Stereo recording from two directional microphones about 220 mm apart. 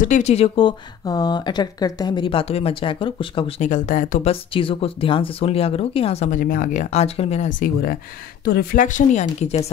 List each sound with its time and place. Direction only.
0.0 s speech: 35° left (ahead or behind)